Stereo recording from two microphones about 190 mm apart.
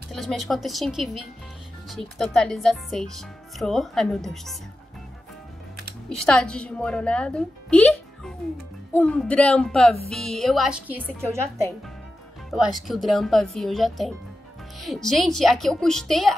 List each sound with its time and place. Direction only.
0.1 s speech: centre (ahead or behind)
6.0 s speech: 5° left (ahead or behind)
12.4 s speech: centre (ahead or behind)